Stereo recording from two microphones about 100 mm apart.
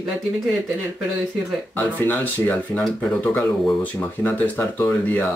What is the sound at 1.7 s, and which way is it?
Speech, 20° left (ahead or behind).